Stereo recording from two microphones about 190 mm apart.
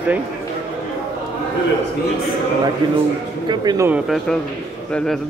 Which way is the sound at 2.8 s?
25° right (ahead or behind).